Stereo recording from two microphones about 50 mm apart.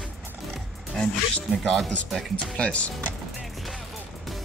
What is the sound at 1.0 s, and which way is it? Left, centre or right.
Speech, centre.